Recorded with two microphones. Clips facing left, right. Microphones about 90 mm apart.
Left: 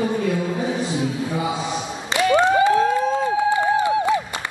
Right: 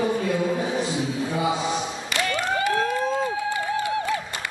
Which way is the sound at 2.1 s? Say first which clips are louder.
Left 10 dB; 20° left (ahead or behind).